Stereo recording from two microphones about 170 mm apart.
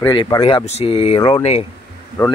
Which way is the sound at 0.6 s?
35° left (ahead or behind).